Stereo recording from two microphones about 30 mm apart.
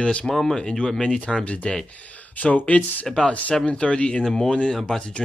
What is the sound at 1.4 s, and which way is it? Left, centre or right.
Speech, left.